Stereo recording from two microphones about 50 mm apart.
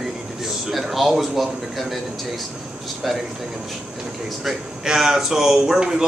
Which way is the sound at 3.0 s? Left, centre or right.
Centre.